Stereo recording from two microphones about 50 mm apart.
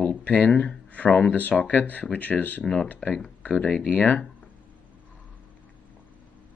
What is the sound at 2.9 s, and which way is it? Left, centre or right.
Speech, left.